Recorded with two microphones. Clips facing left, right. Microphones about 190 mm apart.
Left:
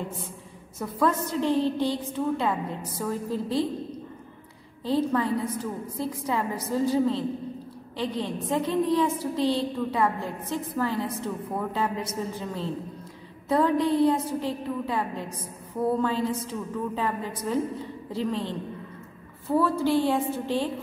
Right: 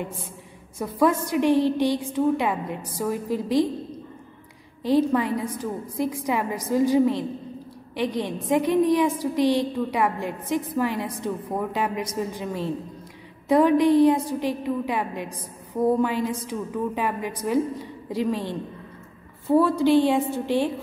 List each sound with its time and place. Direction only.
0.7 s a woman's voice: 15° right (ahead or behind)
4.8 s a woman's voice: 15° right (ahead or behind)